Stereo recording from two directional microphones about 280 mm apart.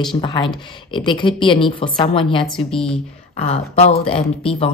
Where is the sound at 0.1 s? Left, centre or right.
Centre.